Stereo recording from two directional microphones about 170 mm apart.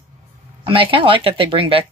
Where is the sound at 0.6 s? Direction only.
30° right (ahead or behind).